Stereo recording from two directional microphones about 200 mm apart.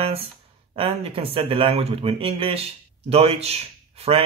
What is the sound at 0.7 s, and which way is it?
Speech, 30° right (ahead or behind).